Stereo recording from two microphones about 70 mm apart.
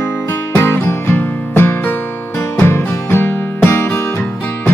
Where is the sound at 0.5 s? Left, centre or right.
Left.